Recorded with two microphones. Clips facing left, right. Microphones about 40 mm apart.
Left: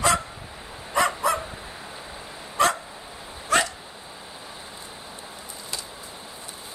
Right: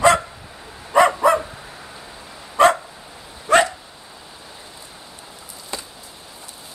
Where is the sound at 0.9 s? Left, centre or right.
Right.